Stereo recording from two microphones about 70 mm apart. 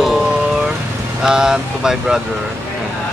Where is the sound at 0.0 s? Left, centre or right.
Centre.